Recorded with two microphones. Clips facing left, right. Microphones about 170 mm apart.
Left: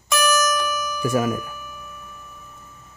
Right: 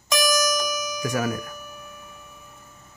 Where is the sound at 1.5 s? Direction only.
40° right (ahead or behind).